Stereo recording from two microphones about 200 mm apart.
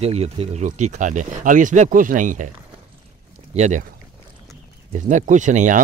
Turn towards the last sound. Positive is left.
turn(degrees=-40)  # may be behind; listen again after turning